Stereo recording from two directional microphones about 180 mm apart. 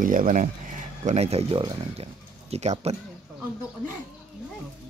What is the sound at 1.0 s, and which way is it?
Speech, 35° right (ahead or behind).